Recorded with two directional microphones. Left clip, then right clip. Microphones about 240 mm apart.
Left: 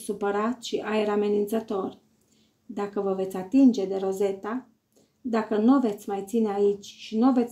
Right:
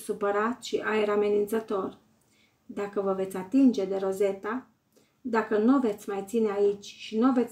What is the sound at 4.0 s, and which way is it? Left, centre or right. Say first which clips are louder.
Speech: left 1 dB; right.